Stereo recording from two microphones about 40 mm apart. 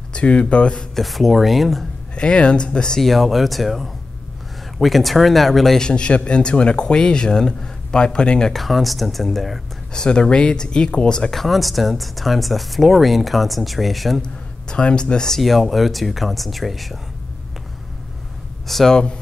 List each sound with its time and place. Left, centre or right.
0.1 s speech: left
0.9 s speech: centre
2.1 s speech: left
3.0 s speech: centre
5.8 s speech: left
8.5 s speech: centre
9.9 s speech: left
11.3 s speech: centre
14.2 s speech: left
15.3 s speech: centre
18.9 s speech: left